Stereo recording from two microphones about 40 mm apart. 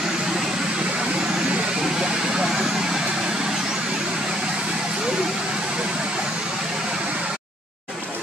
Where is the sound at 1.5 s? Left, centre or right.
Centre.